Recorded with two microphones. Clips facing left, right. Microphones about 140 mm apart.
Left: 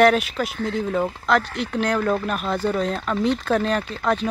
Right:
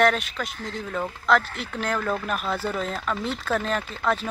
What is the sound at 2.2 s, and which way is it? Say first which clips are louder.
Speech: left 4 dB; centre (ahead or behind).